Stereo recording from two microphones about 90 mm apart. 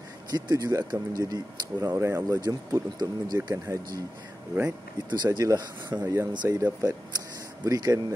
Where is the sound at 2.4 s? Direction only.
50° right (ahead or behind).